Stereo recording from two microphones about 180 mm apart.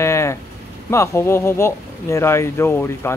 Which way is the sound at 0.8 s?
15° left (ahead or behind).